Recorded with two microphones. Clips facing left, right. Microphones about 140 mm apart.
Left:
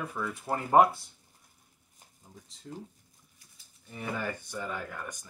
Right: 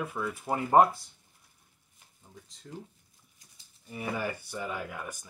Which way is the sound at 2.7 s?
25° left (ahead or behind).